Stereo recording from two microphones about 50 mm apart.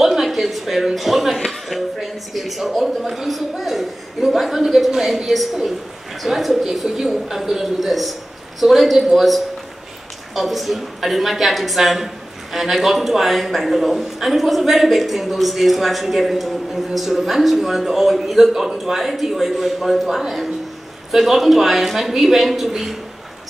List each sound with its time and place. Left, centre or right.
0.0 s a man's voice: centre